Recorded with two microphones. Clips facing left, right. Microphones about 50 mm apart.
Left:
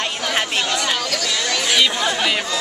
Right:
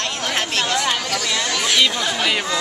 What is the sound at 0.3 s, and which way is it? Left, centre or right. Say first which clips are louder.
Chatter: left 1 dB; centre.